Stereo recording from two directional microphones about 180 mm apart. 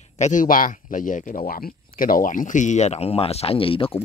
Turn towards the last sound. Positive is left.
turn(degrees=30)  # may be behind; listen again after turning